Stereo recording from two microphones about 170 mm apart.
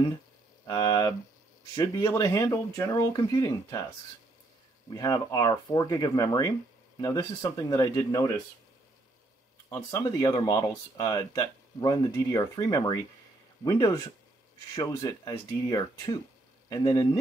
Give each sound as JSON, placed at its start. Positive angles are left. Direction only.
{"t": 0.7, "sound": "speech", "side_deg": 25}
{"t": 4.9, "sound": "speech", "side_deg": 20}
{"t": 9.7, "sound": "speech", "side_deg": 20}